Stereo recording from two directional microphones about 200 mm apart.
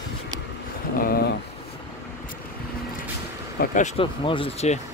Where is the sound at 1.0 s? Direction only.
50° left (ahead or behind).